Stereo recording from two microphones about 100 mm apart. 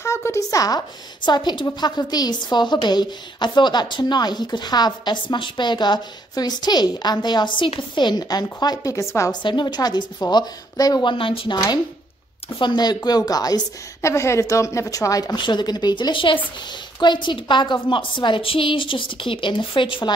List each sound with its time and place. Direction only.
0.0 s a woman's voice: 30° left (ahead or behind)
9.3 s a woman's voice: 50° left (ahead or behind)
11.5 s a woman's voice: 45° left (ahead or behind)
15.3 s a woman's voice: 50° left (ahead or behind)